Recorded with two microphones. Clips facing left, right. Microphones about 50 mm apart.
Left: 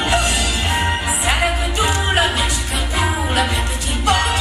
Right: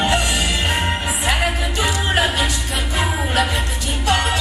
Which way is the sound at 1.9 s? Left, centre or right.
Left.